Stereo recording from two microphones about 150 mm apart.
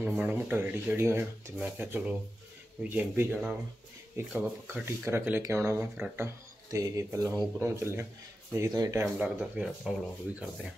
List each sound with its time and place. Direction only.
0.0 s speech: 10° right (ahead or behind)
9.0 s speech: 5° right (ahead or behind)